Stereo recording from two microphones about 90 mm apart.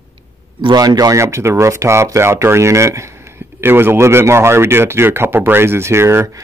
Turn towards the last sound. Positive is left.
turn(degrees=-35)  # may be behind; listen again after turning